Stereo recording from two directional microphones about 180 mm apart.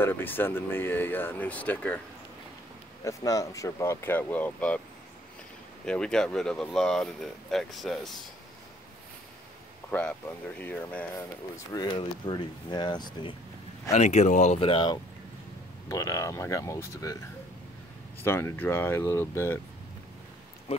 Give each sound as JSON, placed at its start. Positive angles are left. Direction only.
{"t": 0.0, "sound": "speech", "side_deg": 10}
{"t": 3.0, "sound": "speech", "side_deg": 20}
{"t": 5.9, "sound": "speech", "side_deg": 5}
{"t": 9.8, "sound": "speech", "side_deg": 10}
{"t": 11.7, "sound": "speech", "side_deg": 25}
{"t": 13.9, "sound": "speech", "side_deg": 40}
{"t": 14.6, "sound": "speech", "side_deg": 25}
{"t": 18.2, "sound": "speech", "side_deg": 15}